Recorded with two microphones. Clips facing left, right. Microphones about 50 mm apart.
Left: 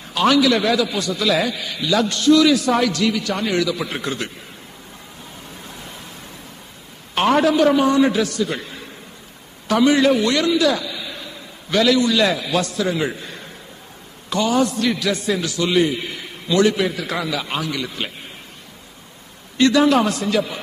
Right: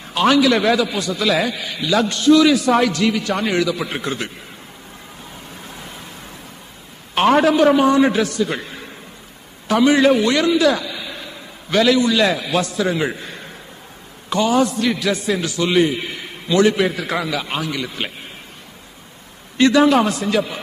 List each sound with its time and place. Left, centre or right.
0.1 s a man's voice: centre
7.2 s a man's voice: centre
9.7 s a man's voice: centre
14.3 s a man's voice: right
19.5 s a man's voice: right